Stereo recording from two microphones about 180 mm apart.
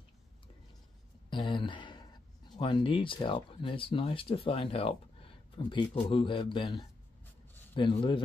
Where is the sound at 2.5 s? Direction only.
25° left (ahead or behind).